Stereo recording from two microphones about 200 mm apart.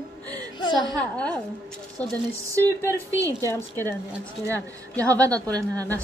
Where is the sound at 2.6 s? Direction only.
10° left (ahead or behind).